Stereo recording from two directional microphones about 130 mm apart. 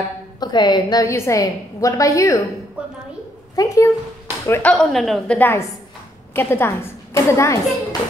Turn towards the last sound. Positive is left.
turn(degrees=25)  # may be behind; listen again after turning